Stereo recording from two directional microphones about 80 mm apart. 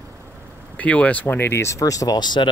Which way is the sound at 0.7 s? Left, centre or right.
Centre.